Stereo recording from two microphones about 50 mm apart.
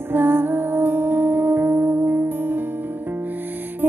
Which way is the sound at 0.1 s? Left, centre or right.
Right.